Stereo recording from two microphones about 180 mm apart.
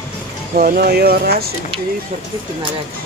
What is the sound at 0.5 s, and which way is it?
Speech, 55° right (ahead or behind).